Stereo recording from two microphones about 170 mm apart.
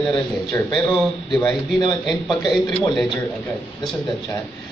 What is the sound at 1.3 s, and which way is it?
A man's voice, 5° left (ahead or behind).